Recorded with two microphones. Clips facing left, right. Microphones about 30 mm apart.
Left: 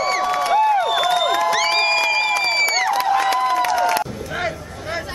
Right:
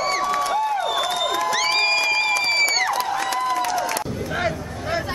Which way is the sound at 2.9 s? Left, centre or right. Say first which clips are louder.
Left 5 dB; centre.